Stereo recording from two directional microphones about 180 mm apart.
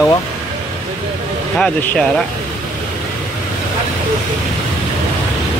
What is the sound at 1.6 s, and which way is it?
Speech, 5° left (ahead or behind).